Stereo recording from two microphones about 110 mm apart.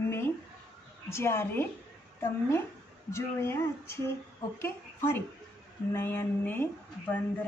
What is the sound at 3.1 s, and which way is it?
Speech, 25° left (ahead or behind).